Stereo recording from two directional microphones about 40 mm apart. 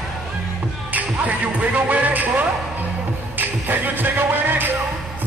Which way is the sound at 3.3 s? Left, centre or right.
Right.